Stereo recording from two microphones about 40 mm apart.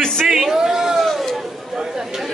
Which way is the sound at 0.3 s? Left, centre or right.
Centre.